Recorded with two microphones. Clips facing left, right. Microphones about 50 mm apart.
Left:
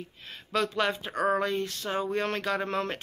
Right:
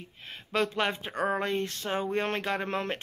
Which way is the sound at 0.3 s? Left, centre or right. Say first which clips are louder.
Even; right.